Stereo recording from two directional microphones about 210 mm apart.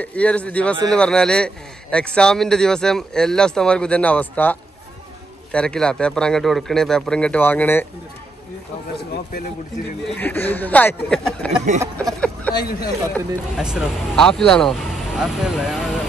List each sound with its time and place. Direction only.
0.0 s a man's voice: 5° left (ahead or behind)
10.1 s speech: 10° left (ahead or behind)
12.0 s a sound: 5° left (ahead or behind)
12.5 s speech: 45° left (ahead or behind)
13.6 s a man's voice: 5° right (ahead or behind)